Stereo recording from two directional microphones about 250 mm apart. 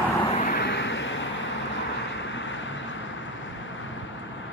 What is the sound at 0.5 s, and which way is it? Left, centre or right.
Vehicle, left.